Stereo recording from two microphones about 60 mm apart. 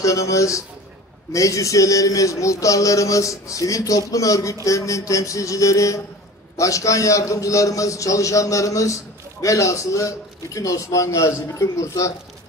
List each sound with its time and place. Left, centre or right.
0.0 s a man's voice: left